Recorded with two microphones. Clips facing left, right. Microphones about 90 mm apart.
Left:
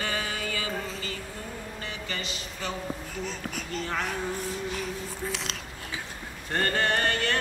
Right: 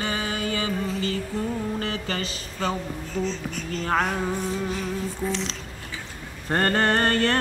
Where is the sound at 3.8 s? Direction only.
50° right (ahead or behind).